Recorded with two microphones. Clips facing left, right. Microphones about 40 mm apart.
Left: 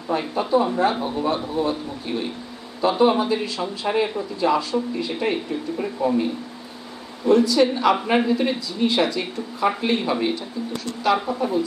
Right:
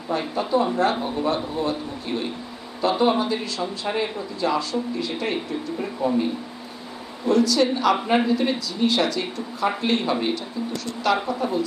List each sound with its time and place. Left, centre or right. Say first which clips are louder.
0.3 s speech: left 2 dB; centre
4.0 s speech: left 3 dB; centre
5.3 s speech: left 2 dB; centre
7.2 s speech: left 2 dB; left
9.7 s speech: left 1 dB; centre